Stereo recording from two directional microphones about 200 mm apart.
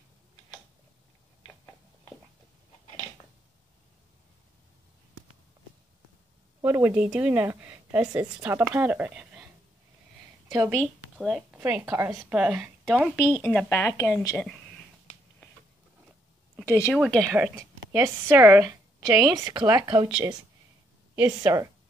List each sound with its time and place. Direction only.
6.6 s a woman's voice: 10° right (ahead or behind)
10.8 s a woman's voice: centre (ahead or behind)
13.4 s speech: 5° left (ahead or behind)
16.6 s a woman's voice: 10° left (ahead or behind)
17.4 s a woman's voice: 15° right (ahead or behind)
21.2 s a woman's voice: 15° right (ahead or behind)